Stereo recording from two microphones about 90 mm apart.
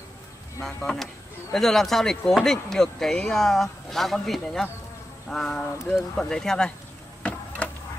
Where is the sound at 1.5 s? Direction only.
5° left (ahead or behind).